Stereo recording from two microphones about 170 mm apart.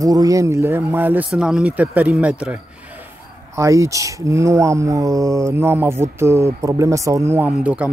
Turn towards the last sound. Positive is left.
turn(degrees=-10)  # may be behind; listen again after turning